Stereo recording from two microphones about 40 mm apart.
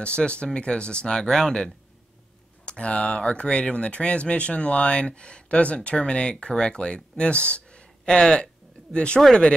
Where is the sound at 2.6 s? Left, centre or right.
Left.